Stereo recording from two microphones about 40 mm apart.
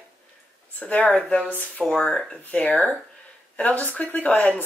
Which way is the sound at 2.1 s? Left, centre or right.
Centre.